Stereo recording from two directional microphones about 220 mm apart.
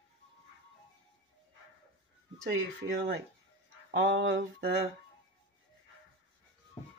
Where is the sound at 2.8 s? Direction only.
55° right (ahead or behind).